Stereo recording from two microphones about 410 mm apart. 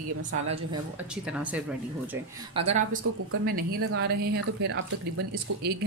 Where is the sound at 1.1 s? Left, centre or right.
Centre.